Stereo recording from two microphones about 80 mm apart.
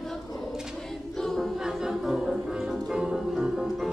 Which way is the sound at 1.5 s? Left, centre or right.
Centre.